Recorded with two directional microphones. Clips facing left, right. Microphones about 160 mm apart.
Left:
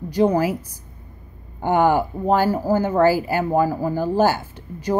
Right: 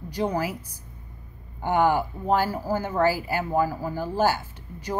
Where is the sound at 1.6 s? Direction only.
40° left (ahead or behind).